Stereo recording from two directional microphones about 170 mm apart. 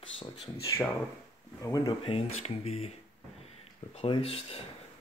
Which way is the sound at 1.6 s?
20° left (ahead or behind).